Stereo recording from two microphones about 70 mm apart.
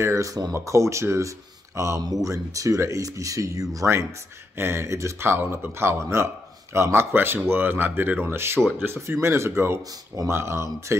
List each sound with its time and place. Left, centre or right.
0.0 s speech: right
8.5 s speech: centre
8.8 s speech: right